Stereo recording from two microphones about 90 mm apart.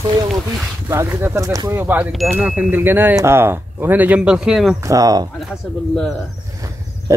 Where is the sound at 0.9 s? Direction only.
30° right (ahead or behind).